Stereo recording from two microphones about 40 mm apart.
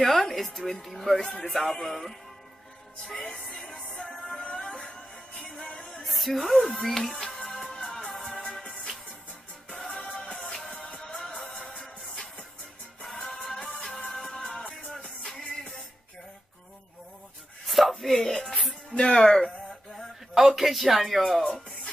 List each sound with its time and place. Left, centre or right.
0.0 s a woman's voice: centre
1.5 s music: centre
5.4 s music: centre; by 8.5 s left
9.7 s music: centre
9.9 s music: left
11.1 s music: centre
11.4 s music: left
13.2 s music: centre
17.6 s chopping: centre
18.6 s music: centre
18.9 s a sound: centre
20.3 s music: centre
21.2 s speech: centre